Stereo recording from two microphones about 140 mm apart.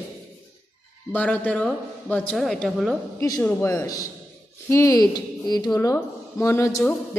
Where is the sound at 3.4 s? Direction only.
15° left (ahead or behind).